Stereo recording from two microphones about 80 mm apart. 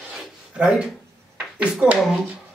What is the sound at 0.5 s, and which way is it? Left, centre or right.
Speech, centre.